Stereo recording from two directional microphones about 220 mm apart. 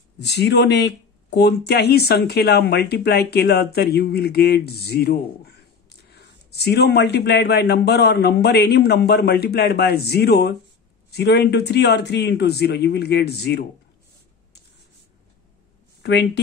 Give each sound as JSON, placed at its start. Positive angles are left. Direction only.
{"t": 0.2, "sound": "speech", "side_deg": 50}
{"t": 16.0, "sound": "speech", "side_deg": 50}